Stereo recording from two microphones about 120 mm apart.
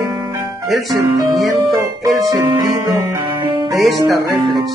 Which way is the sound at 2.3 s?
30° right (ahead or behind).